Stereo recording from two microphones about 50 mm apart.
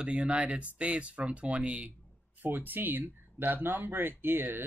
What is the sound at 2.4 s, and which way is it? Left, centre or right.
Speech, right.